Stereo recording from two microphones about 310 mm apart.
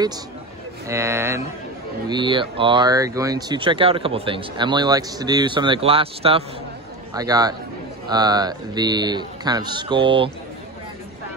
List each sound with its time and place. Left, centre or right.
0.8 s speech: centre